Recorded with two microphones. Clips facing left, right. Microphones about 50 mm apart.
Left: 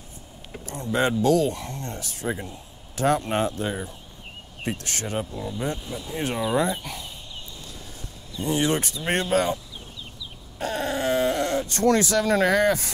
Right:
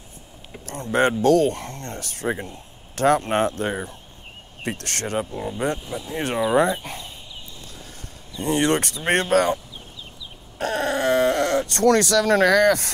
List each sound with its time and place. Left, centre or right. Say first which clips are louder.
0.7 s speech: right 3 dB; right
5.2 s speech: right 4 dB; right
5.9 s speech: right 3 dB; right
6.8 s speech: right 1 dB; right
8.4 s speech: right 3 dB; right
10.6 s speech: right 4 dB; right